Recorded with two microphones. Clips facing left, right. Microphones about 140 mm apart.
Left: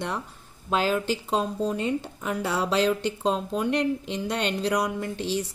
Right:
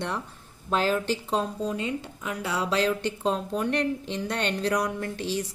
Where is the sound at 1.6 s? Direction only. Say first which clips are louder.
Left 3 dB; 25° left (ahead or behind).